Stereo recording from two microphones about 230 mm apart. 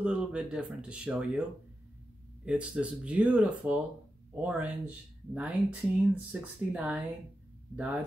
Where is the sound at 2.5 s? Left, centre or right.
Centre.